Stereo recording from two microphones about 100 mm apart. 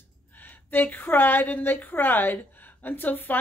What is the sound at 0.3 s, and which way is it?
A woman's voice, 20° left (ahead or behind).